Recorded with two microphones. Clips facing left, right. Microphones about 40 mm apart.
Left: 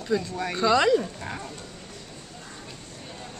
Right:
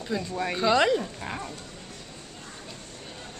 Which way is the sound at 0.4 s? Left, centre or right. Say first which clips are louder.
Even; centre.